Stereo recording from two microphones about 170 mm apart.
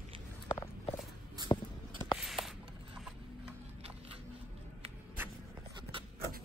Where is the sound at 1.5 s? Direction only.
25° left (ahead or behind).